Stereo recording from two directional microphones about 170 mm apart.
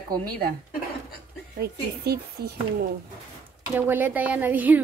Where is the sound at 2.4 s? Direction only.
70° right (ahead or behind).